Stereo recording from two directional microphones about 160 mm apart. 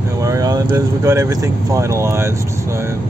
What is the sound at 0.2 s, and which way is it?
Speech, 20° right (ahead or behind).